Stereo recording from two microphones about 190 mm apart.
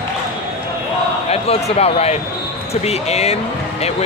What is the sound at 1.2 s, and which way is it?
Speech, 30° left (ahead or behind).